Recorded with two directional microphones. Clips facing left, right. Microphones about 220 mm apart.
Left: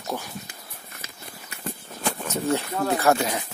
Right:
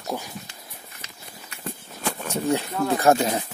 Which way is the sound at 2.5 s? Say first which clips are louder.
Right 1 dB; 15° right (ahead or behind).